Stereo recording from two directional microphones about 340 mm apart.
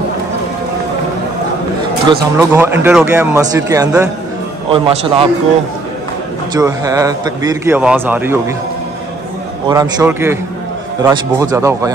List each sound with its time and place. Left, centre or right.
2.0 s a man's voice: centre
6.5 s a man's voice: centre
9.7 s a man's voice: centre